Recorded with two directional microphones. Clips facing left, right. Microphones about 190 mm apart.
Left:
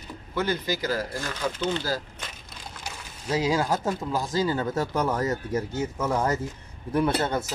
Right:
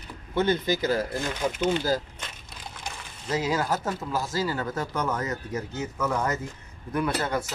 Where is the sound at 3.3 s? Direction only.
10° left (ahead or behind).